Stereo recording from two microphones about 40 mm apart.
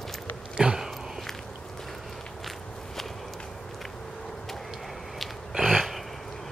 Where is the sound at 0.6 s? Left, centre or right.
Right.